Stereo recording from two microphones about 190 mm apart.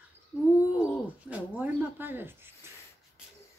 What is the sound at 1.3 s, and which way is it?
Speech, 10° right (ahead or behind).